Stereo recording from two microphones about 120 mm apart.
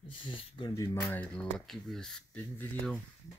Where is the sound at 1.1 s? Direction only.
10° left (ahead or behind).